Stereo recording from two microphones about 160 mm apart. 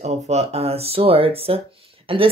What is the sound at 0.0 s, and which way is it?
Speech, 45° right (ahead or behind).